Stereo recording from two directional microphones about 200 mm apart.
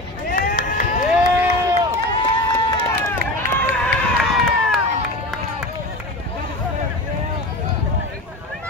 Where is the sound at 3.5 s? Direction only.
5° left (ahead or behind).